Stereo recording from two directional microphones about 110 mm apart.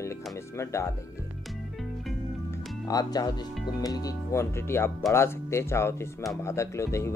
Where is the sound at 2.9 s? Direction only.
35° left (ahead or behind).